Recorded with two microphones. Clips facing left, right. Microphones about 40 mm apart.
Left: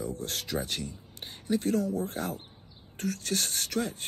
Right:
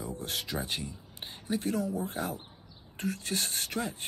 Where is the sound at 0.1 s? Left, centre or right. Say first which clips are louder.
Left 2 dB; right.